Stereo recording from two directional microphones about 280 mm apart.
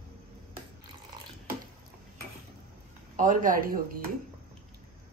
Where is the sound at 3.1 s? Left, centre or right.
Right.